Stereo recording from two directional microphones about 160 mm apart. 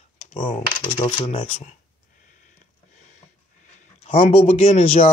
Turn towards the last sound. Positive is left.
turn(degrees=40)  # may be behind; listen again after turning